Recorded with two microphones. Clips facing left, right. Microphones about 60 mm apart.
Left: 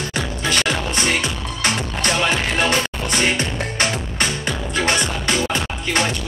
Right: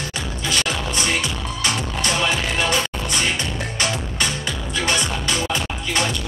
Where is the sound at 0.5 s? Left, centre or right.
Left.